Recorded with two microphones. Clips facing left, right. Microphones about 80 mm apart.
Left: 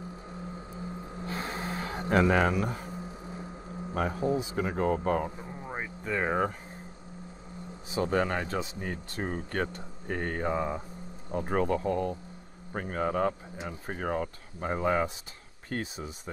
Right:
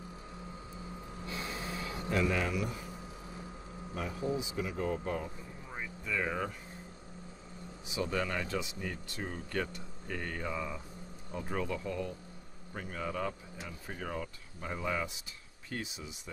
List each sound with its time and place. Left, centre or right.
1.2 s gasp: left
3.9 s speech: left
4.2 s speech: left
5.5 s vehicle: left
7.9 s speech: left